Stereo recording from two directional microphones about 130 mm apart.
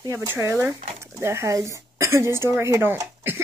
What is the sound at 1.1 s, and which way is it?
Speech, 20° right (ahead or behind).